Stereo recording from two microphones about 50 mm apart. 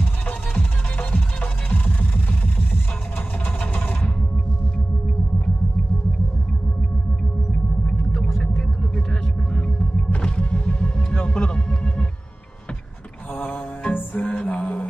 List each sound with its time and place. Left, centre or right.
0.0 s music: left
7.8 s a sound: left
8.4 s rumble: centre
13.3 s mantra: left